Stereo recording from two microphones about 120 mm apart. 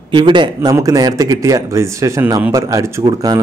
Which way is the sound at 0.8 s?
30° right (ahead or behind).